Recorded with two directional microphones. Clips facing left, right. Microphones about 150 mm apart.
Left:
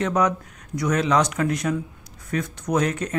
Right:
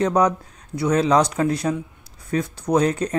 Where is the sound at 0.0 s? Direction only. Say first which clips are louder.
Right 3 dB; 35° right (ahead or behind).